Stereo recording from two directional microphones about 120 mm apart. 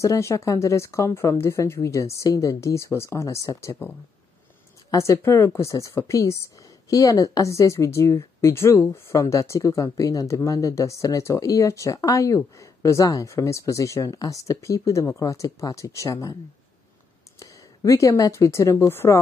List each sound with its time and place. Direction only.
0.0 s speech: 25° left (ahead or behind)
4.9 s speech: 25° left (ahead or behind)
17.4 s speech: 25° left (ahead or behind)